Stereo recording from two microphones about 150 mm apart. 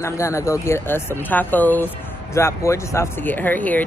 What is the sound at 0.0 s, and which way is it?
Speech, 20° left (ahead or behind).